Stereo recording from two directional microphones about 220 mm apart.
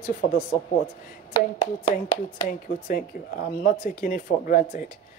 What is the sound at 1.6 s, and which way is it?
Speech, 20° left (ahead or behind).